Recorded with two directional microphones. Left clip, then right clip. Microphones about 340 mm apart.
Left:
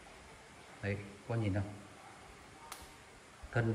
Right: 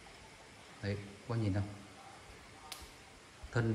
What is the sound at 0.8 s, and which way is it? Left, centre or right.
Speech, centre.